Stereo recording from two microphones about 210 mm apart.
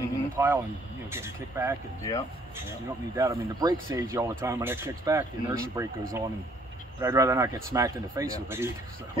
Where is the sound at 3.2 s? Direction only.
15° right (ahead or behind).